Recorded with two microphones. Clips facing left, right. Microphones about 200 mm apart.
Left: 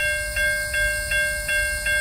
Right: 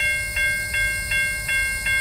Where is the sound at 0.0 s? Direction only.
45° left (ahead or behind).